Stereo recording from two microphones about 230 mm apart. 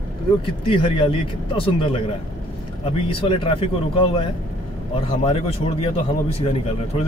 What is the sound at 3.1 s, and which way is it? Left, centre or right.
Speech, left.